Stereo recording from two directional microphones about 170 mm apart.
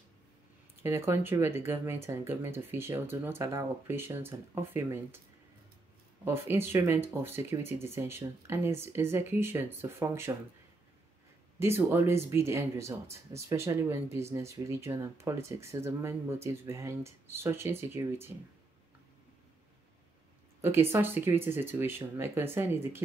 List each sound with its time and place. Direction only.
0.8 s speech: 15° right (ahead or behind)
6.2 s speech: 15° right (ahead or behind)
11.6 s speech: 15° right (ahead or behind)
20.6 s speech: 15° right (ahead or behind)